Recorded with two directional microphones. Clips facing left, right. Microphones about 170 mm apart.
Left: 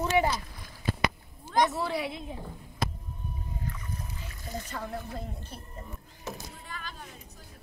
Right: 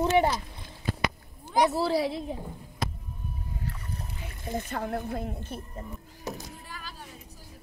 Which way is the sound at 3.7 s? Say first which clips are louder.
Right 1 dB; 35° right (ahead or behind).